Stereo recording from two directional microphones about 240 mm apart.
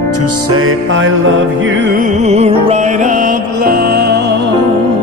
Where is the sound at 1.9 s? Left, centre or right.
Right.